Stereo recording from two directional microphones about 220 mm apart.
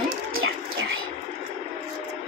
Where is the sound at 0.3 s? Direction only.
65° right (ahead or behind).